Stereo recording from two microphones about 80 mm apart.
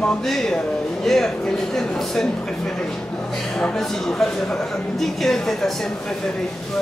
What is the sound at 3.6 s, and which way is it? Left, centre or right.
A woman's voice, centre.